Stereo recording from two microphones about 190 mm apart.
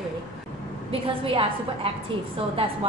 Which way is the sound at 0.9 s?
30° right (ahead or behind).